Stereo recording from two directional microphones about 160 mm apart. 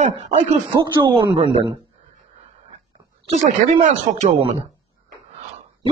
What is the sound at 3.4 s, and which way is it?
Speech, 50° right (ahead or behind).